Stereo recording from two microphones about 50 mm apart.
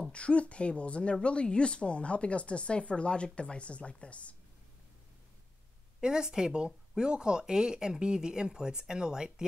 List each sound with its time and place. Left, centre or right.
0.1 s speech: left
5.9 s speech: centre